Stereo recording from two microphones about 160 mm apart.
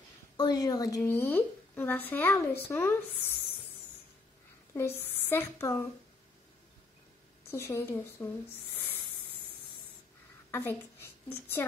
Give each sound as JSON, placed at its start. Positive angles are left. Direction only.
{"t": 0.4, "sound": "a woman's voice", "side_deg": 25}
{"t": 4.7, "sound": "a woman's voice", "side_deg": 15}
{"t": 7.5, "sound": "a woman's voice", "side_deg": 15}
{"t": 10.5, "sound": "a woman's voice", "side_deg": 15}